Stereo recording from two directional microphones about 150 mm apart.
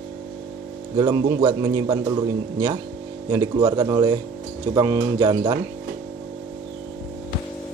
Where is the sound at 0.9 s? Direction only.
25° right (ahead or behind).